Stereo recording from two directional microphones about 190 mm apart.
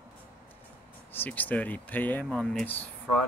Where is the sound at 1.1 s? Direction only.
10° left (ahead or behind).